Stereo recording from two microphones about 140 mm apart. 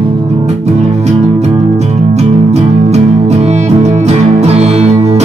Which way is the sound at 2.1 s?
55° right (ahead or behind).